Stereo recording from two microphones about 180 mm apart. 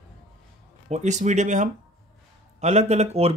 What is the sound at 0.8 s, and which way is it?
Speech, 40° right (ahead or behind).